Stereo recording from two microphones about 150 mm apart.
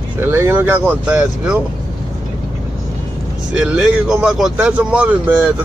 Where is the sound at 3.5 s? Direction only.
5° right (ahead or behind).